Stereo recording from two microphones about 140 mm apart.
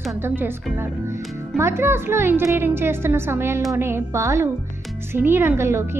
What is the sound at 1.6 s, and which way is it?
A woman's voice, 15° right (ahead or behind).